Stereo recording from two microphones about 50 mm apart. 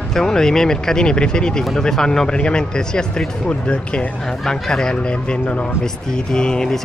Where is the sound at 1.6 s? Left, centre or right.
Centre.